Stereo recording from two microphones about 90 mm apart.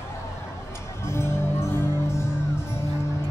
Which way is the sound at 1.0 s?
30° left (ahead or behind).